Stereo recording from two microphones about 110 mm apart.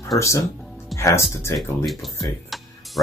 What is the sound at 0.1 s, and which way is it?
Speech, 30° left (ahead or behind).